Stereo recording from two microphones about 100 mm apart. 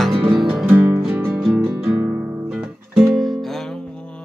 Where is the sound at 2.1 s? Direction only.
25° right (ahead or behind).